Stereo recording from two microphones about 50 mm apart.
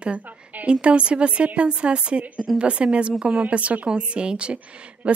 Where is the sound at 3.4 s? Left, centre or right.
Right.